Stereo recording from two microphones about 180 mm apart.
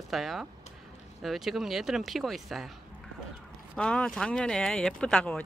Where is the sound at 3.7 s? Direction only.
5° left (ahead or behind).